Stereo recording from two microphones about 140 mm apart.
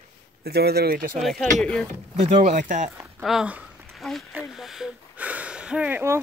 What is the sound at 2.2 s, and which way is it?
Speech, 55° right (ahead or behind).